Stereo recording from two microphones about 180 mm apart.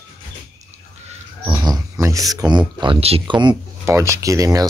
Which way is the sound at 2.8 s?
30° right (ahead or behind).